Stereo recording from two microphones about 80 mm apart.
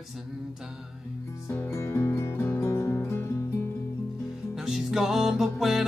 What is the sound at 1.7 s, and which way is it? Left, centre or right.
Music, left.